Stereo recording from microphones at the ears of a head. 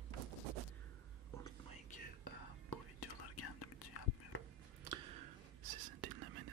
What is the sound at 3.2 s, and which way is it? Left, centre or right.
Whispering, left.